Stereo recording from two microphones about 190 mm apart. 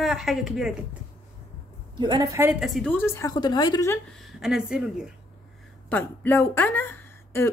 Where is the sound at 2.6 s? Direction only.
Centre (ahead or behind).